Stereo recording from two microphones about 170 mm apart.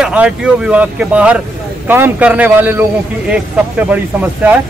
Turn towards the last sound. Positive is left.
turn(degrees=-10)  # may be behind; listen again after turning